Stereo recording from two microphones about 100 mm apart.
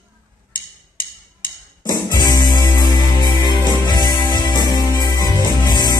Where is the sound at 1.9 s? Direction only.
45° left (ahead or behind).